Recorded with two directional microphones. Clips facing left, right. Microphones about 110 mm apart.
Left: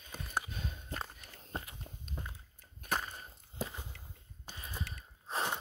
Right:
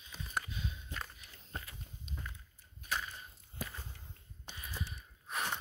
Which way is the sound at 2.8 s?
45° left (ahead or behind).